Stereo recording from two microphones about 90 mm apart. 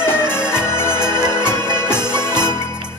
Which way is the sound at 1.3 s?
25° left (ahead or behind).